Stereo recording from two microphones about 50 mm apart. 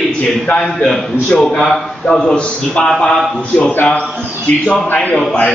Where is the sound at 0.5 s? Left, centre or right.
Left.